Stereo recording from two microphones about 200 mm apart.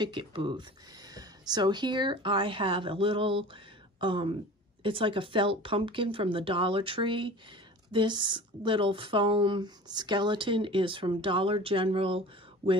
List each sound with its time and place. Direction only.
0.0 s speech: 25° right (ahead or behind)